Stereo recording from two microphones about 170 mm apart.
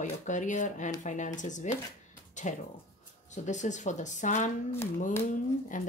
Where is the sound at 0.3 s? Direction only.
45° left (ahead or behind).